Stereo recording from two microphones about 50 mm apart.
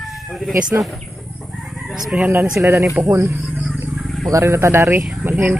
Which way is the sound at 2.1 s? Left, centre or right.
Right.